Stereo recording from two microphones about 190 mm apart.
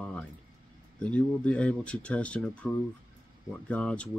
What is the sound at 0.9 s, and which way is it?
Speech, 5° left (ahead or behind).